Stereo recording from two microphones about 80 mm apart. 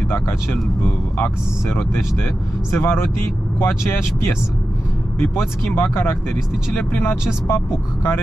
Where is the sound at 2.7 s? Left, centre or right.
Left.